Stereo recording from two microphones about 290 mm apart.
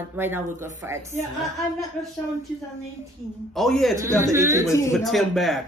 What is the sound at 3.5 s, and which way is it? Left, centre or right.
Speech, centre.